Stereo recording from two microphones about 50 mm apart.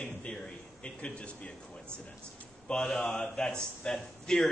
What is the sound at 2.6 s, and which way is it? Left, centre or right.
Speech, centre.